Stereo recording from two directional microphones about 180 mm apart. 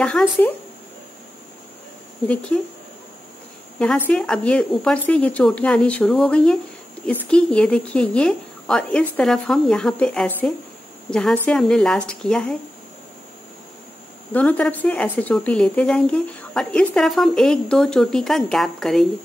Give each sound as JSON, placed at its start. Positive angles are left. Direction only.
{"t": 0.0, "sound": "speech", "side_deg": 10}
{"t": 2.5, "sound": "speech", "side_deg": 10}
{"t": 3.8, "sound": "speech", "side_deg": 5}
{"t": 14.3, "sound": "speech", "side_deg": 10}